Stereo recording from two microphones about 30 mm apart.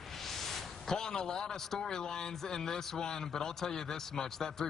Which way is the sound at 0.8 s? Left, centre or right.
Left.